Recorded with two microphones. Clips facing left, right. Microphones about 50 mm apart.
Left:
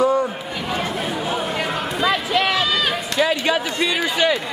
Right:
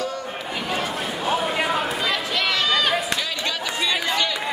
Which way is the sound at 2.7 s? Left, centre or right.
Centre.